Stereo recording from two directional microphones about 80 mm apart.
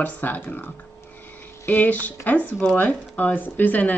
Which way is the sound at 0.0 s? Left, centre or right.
Left.